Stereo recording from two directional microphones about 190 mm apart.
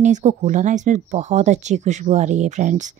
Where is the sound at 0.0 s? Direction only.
40° right (ahead or behind).